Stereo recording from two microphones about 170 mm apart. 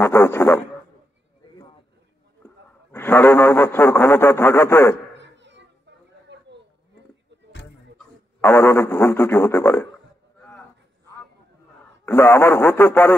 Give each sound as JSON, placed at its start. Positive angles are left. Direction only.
{"t": 0.0, "sound": "a man's voice", "side_deg": 15}
{"t": 2.4, "sound": "a man's voice", "side_deg": 15}
{"t": 5.1, "sound": "a sound", "side_deg": -90}
{"t": 8.4, "sound": "a man's voice", "side_deg": 15}
{"t": 11.8, "sound": "a man's voice", "side_deg": 15}